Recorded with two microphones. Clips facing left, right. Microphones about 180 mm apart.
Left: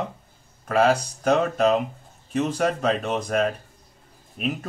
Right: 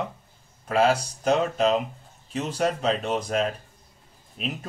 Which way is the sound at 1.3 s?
50° left (ahead or behind).